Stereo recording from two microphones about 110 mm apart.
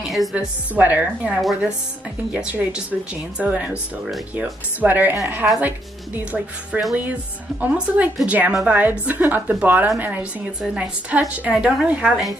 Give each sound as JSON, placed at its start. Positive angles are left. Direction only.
{"t": 0.0, "sound": "a woman's voice", "side_deg": 0}
{"t": 0.7, "sound": "a woman's voice", "side_deg": -15}